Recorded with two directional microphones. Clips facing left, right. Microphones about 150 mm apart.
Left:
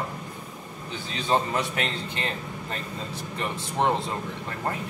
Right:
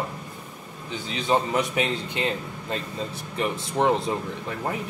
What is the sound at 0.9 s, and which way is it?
Speech, 15° right (ahead or behind).